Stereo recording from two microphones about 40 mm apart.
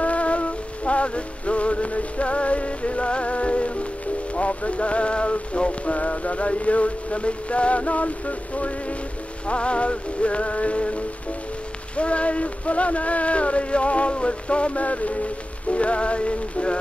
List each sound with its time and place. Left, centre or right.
0.0 s music: left
4.4 s rain on surface: left
12.0 s rain on surface: left